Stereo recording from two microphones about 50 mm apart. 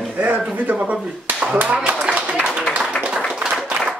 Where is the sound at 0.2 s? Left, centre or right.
Right.